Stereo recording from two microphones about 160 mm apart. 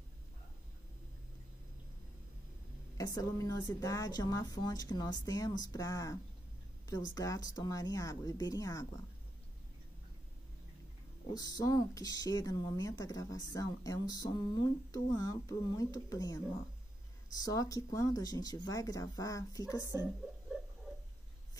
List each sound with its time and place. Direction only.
3.0 s speech: 20° left (ahead or behind)
7.2 s speech: 20° left (ahead or behind)
11.3 s speech: 25° left (ahead or behind)
19.8 s speech: 20° right (ahead or behind)
20.1 s a sound: 5° right (ahead or behind)